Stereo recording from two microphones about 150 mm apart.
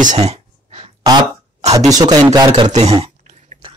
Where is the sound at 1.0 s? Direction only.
25° right (ahead or behind).